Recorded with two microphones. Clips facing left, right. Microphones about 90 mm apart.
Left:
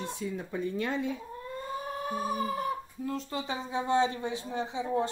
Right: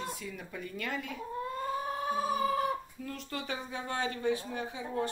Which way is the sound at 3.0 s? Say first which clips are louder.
Left 5 dB; 25° left (ahead or behind).